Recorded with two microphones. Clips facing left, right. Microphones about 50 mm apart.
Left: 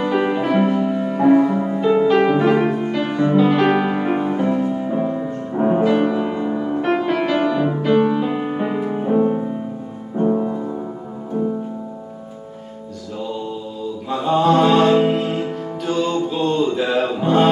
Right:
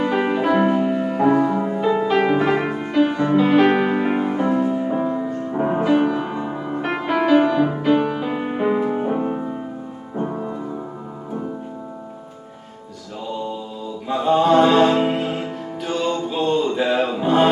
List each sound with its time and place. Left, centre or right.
0.0 s music: centre
0.7 s music: centre
1.3 s music: centre
4.4 s music: centre
14.0 s music: centre